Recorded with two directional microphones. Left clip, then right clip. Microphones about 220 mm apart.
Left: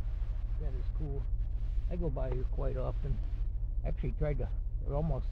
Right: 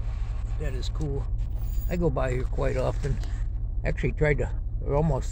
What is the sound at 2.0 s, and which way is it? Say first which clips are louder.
Speech: right 11 dB; 10° right (ahead or behind).